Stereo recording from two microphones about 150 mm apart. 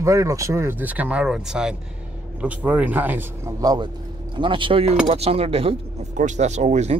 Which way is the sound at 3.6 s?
25° right (ahead or behind).